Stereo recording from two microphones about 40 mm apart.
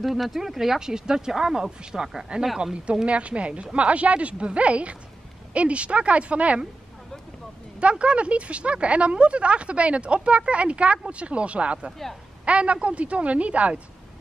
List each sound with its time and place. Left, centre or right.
0.0 s speech: centre; by 6.6 s right
7.9 s speech: right